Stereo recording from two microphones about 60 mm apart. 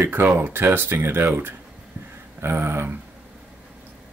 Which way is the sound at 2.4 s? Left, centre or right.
Right.